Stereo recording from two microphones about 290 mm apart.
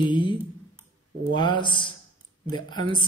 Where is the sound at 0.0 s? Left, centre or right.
Centre.